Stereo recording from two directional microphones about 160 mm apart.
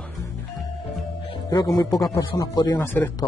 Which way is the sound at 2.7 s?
15° left (ahead or behind).